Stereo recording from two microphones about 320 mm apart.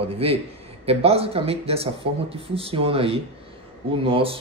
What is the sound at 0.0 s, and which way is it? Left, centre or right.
Speech, centre.